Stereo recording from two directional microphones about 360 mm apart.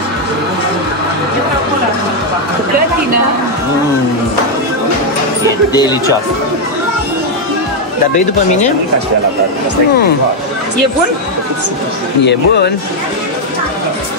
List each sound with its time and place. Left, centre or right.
5.7 s speech: centre
12.3 s speech: left